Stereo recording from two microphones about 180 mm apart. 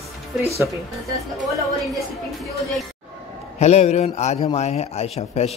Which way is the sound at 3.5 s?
35° left (ahead or behind).